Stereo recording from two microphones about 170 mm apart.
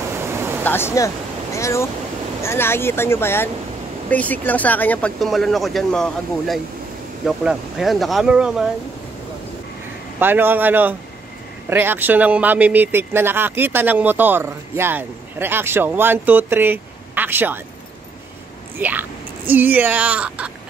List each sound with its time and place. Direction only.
0.2 s a sound: 15° right (ahead or behind)
0.7 s speech: 15° left (ahead or behind); by 8.6 s 5° right (ahead or behind)
10.1 s speech: 10° right (ahead or behind)
18.8 s speech: 10° right (ahead or behind)